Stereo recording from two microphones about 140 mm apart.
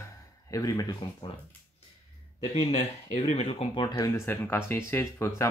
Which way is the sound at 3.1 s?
45° left (ahead or behind).